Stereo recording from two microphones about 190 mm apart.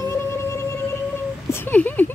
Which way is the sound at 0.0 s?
15° left (ahead or behind).